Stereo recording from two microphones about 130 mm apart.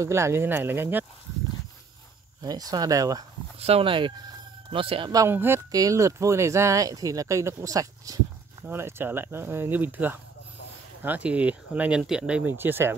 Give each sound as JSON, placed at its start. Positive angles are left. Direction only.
{"t": 0.0, "sound": "speech", "side_deg": -20}
{"t": 2.4, "sound": "speech", "side_deg": -30}
{"t": 3.5, "sound": "speech", "side_deg": -50}
{"t": 5.3, "sound": "speech", "side_deg": -15}
{"t": 5.7, "sound": "speech", "side_deg": -25}